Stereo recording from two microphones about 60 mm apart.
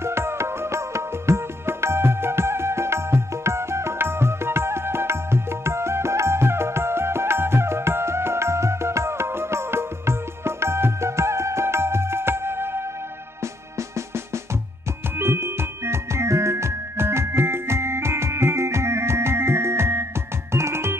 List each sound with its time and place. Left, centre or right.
0.0 s music: right
13.4 s music: right